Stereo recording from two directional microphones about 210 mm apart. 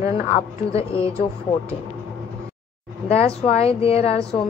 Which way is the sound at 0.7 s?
25° left (ahead or behind).